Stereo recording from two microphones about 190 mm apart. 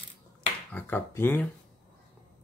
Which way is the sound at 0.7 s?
10° left (ahead or behind).